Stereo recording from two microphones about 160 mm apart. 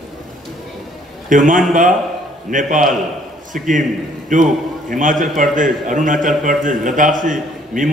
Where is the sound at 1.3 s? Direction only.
55° right (ahead or behind).